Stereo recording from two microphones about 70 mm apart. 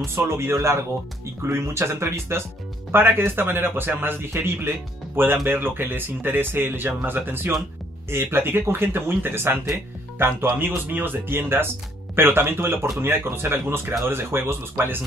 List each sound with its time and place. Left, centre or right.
0.0 s a man's voice: right